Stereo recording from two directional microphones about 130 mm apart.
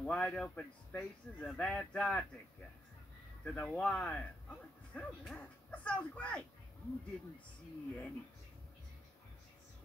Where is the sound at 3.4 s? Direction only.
5° left (ahead or behind).